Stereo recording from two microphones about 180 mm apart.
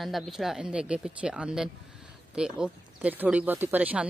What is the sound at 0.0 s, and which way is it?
Speech, centre (ahead or behind).